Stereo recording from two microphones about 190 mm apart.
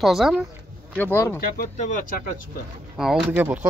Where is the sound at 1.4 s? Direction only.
50° left (ahead or behind).